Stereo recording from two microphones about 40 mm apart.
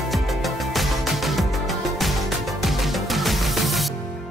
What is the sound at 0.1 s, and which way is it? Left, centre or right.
Music, centre.